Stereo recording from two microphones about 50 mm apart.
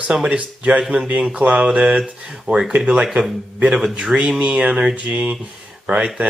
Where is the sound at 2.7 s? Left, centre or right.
Right.